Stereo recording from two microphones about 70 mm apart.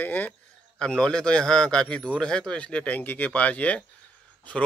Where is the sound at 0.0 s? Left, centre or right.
Left.